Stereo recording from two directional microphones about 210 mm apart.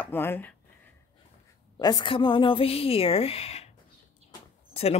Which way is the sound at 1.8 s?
20° left (ahead or behind).